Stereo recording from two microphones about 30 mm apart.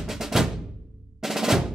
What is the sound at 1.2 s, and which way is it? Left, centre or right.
Drum, centre.